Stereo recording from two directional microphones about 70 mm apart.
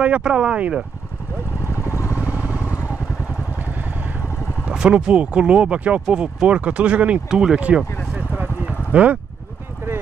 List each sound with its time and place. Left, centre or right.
0.0 s speech: centre
1.8 s vehicle: left
4.6 s speech: centre
8.3 s a sound: centre